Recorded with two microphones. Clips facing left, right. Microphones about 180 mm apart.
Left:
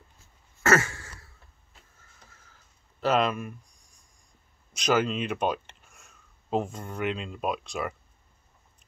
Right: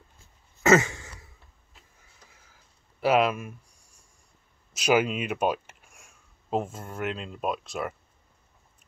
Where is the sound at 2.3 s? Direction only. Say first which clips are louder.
Even; 10° right (ahead or behind).